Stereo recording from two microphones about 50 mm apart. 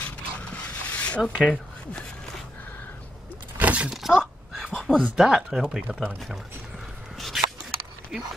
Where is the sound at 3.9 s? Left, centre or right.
Centre.